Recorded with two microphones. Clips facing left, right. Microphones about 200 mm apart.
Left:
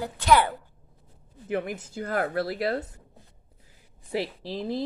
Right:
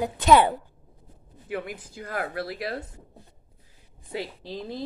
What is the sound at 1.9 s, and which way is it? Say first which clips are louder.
Speech: left 4 dB; 55° left (ahead or behind).